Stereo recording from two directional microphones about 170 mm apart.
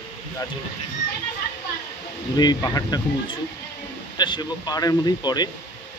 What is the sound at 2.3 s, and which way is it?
Speech, 20° left (ahead or behind).